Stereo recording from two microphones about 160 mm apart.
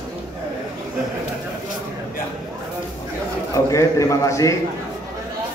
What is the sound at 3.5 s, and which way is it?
A man's voice, 20° left (ahead or behind).